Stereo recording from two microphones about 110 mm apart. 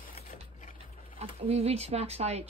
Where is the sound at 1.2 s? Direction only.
65° right (ahead or behind).